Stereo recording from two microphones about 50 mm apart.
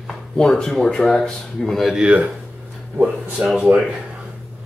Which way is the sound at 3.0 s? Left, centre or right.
Centre.